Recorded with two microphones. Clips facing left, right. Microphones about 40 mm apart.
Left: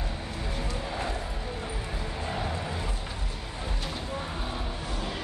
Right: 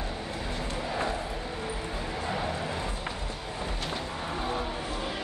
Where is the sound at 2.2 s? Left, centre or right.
Right.